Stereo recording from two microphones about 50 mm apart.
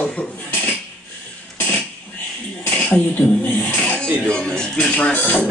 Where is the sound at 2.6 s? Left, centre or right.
Left.